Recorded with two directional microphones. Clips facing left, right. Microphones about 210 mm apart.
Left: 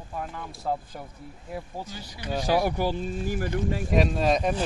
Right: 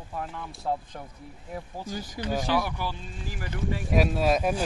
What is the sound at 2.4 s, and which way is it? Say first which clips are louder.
Speech: left 8 dB; 40° left (ahead or behind).